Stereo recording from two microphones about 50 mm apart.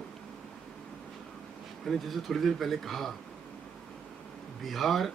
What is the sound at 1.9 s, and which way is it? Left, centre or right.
Speech, centre.